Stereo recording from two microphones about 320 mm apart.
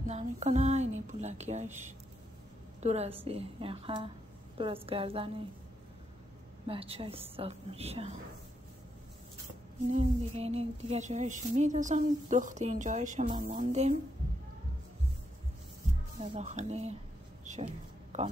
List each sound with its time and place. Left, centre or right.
0.0 s speech: right
2.8 s a woman's voice: centre
6.7 s a woman's voice: centre
9.8 s speech: centre
16.2 s speech: right
18.1 s a man's voice: right